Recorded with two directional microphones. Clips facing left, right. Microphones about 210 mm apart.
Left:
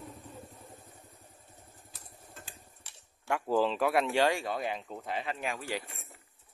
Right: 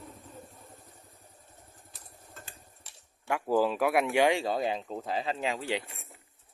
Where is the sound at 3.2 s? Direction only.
5° right (ahead or behind).